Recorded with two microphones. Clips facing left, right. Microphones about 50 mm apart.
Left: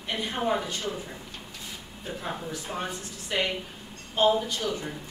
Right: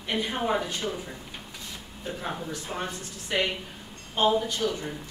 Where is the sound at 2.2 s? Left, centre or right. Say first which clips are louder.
Even; centre.